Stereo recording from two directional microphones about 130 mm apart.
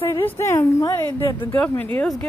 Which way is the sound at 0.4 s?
20° left (ahead or behind).